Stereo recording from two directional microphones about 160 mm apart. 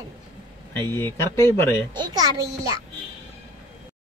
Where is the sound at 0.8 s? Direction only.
15° left (ahead or behind).